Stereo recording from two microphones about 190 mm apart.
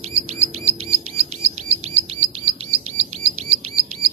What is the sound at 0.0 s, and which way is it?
Bird, 35° right (ahead or behind).